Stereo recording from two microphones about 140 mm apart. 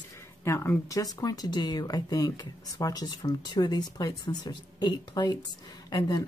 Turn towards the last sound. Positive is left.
turn(degrees=30)  # may be behind; listen again after turning